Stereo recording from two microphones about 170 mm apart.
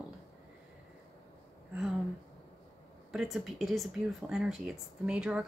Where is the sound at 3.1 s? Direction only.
5° right (ahead or behind).